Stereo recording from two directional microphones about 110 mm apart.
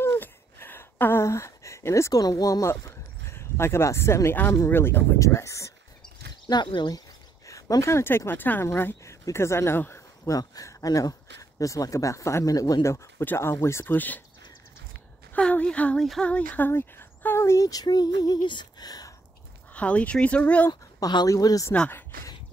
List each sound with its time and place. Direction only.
0.0 s gasp: 20° left (ahead or behind)
6.4 s speech: 45° left (ahead or behind)
7.4 s speech: 30° left (ahead or behind)
15.3 s a woman's voice: 10° left (ahead or behind); by 19.1 s 35° left (ahead or behind)
19.7 s speech: 10° left (ahead or behind)
21.0 s speech: 35° left (ahead or behind)
21.7 s speech: 10° left (ahead or behind)